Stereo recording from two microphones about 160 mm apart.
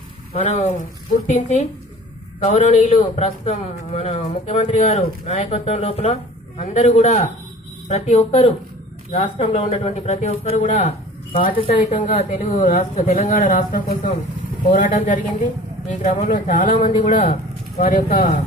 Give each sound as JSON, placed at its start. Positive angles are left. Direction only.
{"t": 0.3, "sound": "a man's voice", "side_deg": 40}